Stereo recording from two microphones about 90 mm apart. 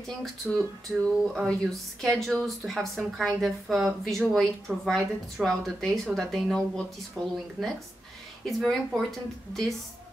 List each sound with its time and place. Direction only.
0.2 s speech: centre (ahead or behind)